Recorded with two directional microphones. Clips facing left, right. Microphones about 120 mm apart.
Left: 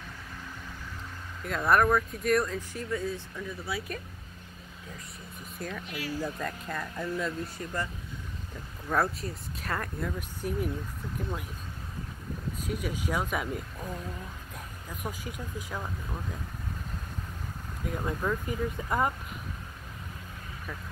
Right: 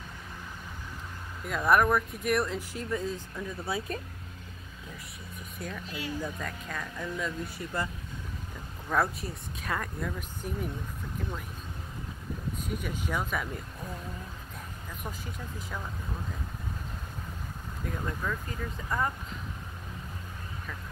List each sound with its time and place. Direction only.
1.4 s speech: 5° right (ahead or behind); by 4.0 s 25° right (ahead or behind)
5.6 s speech: centre (ahead or behind)
5.9 s speech: 25° right (ahead or behind)
6.2 s speech: 5° left (ahead or behind)
8.8 s speech: centre (ahead or behind)
12.6 s speech: 5° left (ahead or behind)
14.9 s speech: 10° left (ahead or behind)
17.8 s speech: 10° left (ahead or behind)